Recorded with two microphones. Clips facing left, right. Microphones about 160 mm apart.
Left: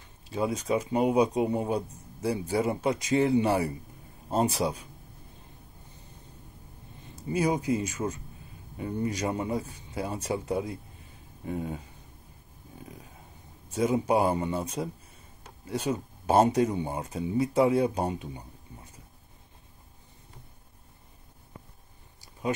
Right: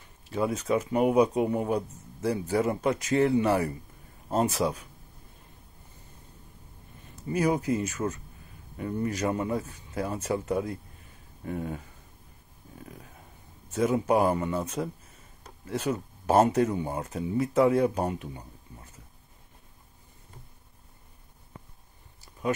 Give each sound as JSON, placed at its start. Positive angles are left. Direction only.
{"t": 0.7, "sound": "speech", "side_deg": 20}
{"t": 7.2, "sound": "speech", "side_deg": 20}
{"t": 12.7, "sound": "dog", "side_deg": 20}
{"t": 13.7, "sound": "speech", "side_deg": 25}
{"t": 16.3, "sound": "speech", "side_deg": 30}